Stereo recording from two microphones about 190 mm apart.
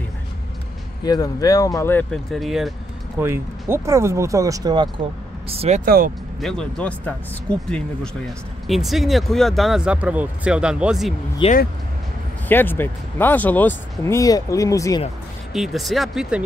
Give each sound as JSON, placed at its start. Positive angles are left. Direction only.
{"t": 1.0, "sound": "speech", "side_deg": 20}
{"t": 3.2, "sound": "speech", "side_deg": -15}
{"t": 5.5, "sound": "speech", "side_deg": -30}
{"t": 5.9, "sound": "speech", "side_deg": -50}
{"t": 6.4, "sound": "speech", "side_deg": 5}
{"t": 11.4, "sound": "speech", "side_deg": 25}
{"t": 12.4, "sound": "speech", "side_deg": 10}
{"t": 15.5, "sound": "speech", "side_deg": 0}